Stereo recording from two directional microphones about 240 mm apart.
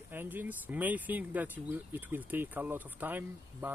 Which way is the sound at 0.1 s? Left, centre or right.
Centre.